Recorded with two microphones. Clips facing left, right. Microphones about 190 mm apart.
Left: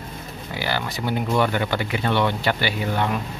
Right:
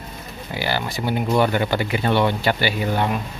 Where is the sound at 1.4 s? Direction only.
35° right (ahead or behind).